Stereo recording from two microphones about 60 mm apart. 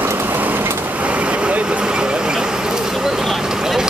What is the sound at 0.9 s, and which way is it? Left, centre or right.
Vehicle, right.